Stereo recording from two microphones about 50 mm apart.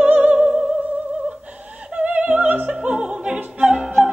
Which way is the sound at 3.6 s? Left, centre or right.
Centre.